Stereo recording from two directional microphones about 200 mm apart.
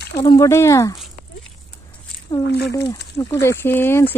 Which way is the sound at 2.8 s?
20° left (ahead or behind).